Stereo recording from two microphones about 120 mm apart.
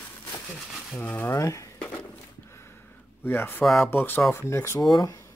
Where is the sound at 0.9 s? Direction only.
20° left (ahead or behind).